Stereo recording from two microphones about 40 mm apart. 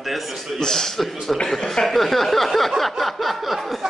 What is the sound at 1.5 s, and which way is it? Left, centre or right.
Speech, centre.